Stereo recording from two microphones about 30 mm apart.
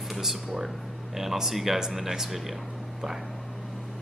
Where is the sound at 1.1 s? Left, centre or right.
Centre.